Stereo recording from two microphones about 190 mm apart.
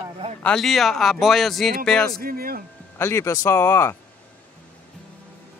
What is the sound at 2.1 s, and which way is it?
Speech, 50° right (ahead or behind).